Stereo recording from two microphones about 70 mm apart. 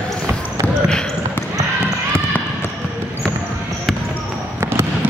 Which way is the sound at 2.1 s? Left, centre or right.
Left.